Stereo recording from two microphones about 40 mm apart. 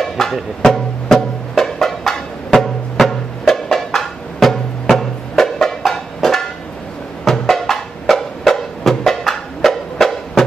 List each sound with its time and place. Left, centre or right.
0.0 s music: centre